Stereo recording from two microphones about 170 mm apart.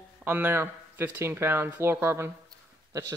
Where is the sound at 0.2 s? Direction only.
10° right (ahead or behind).